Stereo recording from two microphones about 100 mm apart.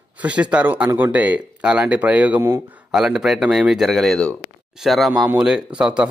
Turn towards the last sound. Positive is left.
turn(degrees=-10)  # may be behind; listen again after turning